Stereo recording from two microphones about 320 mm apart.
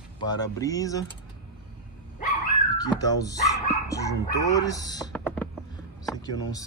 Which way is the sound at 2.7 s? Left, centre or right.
Centre.